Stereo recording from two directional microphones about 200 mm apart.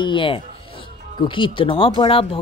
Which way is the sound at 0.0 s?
25° left (ahead or behind).